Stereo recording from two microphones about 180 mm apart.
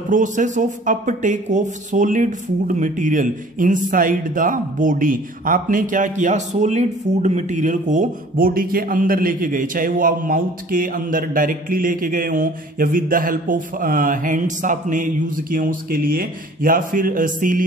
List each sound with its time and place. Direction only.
0.1 s speech: 45° right (ahead or behind)